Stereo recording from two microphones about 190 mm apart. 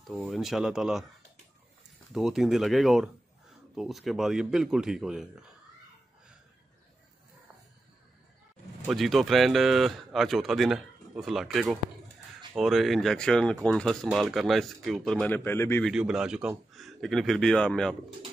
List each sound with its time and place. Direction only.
0.0 s speech: centre (ahead or behind)
2.1 s speech: centre (ahead or behind)
8.8 s speech: centre (ahead or behind)
15.9 s speech: 5° right (ahead or behind)